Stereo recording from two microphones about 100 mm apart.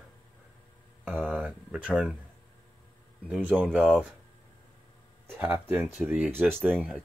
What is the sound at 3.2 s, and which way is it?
Speech, 15° right (ahead or behind).